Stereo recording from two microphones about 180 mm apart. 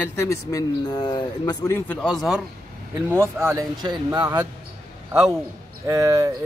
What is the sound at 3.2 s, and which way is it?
A man's voice, 15° right (ahead or behind).